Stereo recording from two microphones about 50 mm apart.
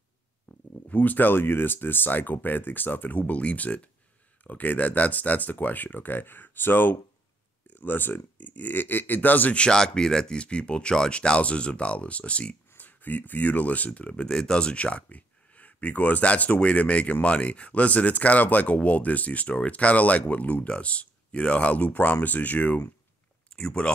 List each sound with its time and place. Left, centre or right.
0.5 s speech: left
9.6 s speech: centre
12.7 s speech: left
14.2 s speech: centre; by 22.8 s left
23.5 s a sound: centre